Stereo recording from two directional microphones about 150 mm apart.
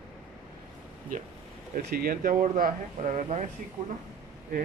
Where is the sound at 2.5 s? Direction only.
50° right (ahead or behind).